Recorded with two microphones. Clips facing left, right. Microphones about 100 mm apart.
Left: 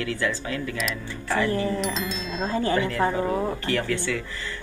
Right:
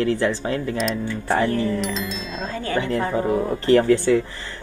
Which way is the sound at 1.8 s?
Centre (ahead or behind).